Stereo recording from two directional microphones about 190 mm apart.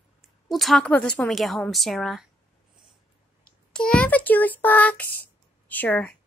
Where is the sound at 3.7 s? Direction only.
5° left (ahead or behind).